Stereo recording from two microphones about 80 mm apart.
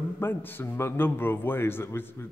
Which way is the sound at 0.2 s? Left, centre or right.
Left.